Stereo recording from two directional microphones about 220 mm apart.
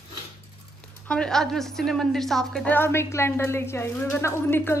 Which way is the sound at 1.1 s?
5° left (ahead or behind).